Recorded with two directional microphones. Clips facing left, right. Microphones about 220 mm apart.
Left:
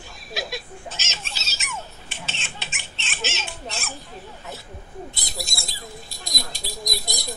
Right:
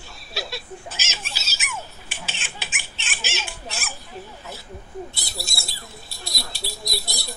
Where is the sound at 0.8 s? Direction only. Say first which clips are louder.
Even; centre (ahead or behind).